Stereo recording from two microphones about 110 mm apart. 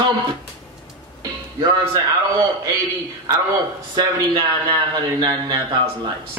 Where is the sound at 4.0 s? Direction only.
45° right (ahead or behind).